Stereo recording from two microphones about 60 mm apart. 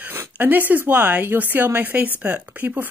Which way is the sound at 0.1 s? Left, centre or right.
Right.